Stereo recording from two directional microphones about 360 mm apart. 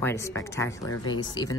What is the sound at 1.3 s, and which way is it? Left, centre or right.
Speech, centre.